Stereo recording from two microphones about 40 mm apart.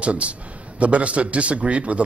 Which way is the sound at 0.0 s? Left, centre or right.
Right.